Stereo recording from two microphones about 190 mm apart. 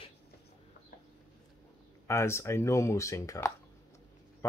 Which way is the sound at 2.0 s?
15° left (ahead or behind).